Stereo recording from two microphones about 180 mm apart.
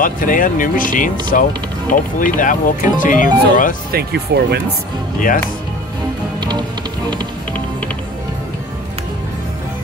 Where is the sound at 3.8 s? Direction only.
60° right (ahead or behind).